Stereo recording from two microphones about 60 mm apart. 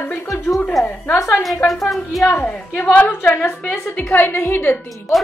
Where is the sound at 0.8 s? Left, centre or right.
Centre.